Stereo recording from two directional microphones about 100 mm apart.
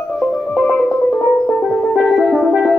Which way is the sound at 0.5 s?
15° left (ahead or behind).